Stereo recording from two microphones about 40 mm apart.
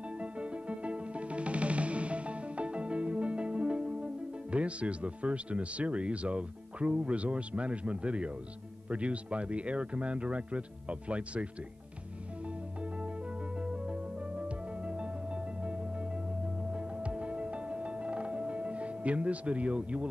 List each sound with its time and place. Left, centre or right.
0.2 s music: right
8.8 s speech: right
13.6 s music: right